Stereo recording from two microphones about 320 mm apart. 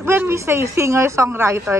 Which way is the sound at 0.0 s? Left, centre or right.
Centre.